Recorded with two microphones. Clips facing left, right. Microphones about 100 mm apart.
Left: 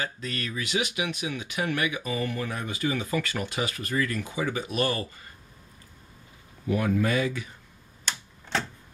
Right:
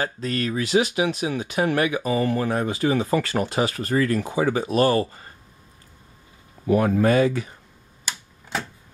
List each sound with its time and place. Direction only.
0.0 s speech: 40° right (ahead or behind)
6.6 s speech: 40° right (ahead or behind)
8.0 s typewriter: 10° right (ahead or behind)